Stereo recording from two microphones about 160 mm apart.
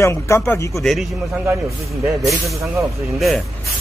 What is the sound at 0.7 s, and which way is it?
Speech, centre (ahead or behind).